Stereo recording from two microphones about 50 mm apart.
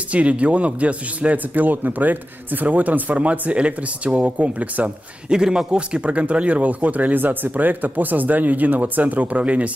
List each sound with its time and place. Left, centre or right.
0.1 s a man's voice: right
5.3 s speech: centre